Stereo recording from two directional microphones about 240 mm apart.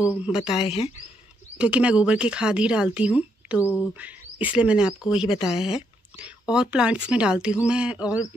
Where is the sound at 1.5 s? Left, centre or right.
Centre.